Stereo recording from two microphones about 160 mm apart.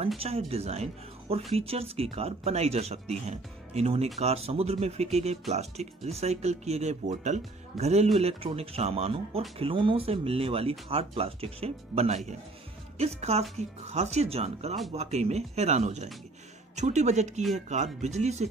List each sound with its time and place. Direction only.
0.2 s speech: 40° right (ahead or behind)